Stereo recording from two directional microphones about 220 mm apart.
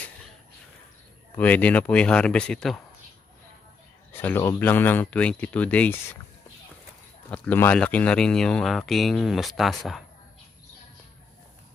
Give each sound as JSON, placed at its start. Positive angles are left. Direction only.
{"t": 1.3, "sound": "speech", "side_deg": 5}
{"t": 4.2, "sound": "speech", "side_deg": 10}
{"t": 7.2, "sound": "speech", "side_deg": 10}